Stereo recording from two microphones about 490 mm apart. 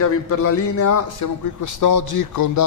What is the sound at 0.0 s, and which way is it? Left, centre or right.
A man's voice, left.